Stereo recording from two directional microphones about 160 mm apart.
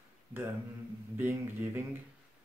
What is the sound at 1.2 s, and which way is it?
Speech, 15° right (ahead or behind).